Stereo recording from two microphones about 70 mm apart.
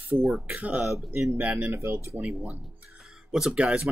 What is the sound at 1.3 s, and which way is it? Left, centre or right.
Speech, right.